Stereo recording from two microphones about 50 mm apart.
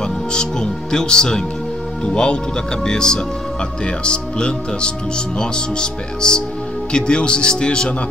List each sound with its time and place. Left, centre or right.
0.0 s speech: centre